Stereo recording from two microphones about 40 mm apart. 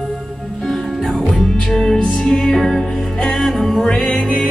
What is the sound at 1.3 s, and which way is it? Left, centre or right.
Music, centre.